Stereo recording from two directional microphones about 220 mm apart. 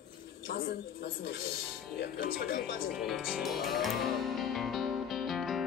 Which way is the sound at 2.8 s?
Centre (ahead or behind).